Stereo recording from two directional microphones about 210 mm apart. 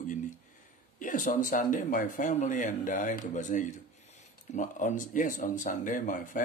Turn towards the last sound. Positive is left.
turn(degrees=40)  # may be behind; listen again after turning